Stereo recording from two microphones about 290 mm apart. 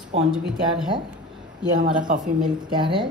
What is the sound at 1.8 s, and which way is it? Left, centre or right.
Speech, right.